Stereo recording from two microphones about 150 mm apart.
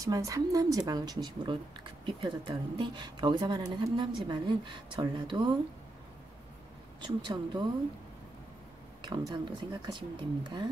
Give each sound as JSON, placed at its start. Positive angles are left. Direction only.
{"t": 0.0, "sound": "a woman's voice", "side_deg": -20}
{"t": 7.0, "sound": "speech", "side_deg": -30}
{"t": 9.0, "sound": "speech", "side_deg": -30}